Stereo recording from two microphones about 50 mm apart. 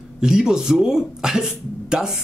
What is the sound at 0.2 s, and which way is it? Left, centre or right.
Speech, centre.